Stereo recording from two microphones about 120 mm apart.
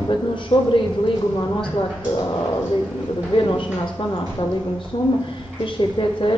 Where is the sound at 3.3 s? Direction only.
40° left (ahead or behind).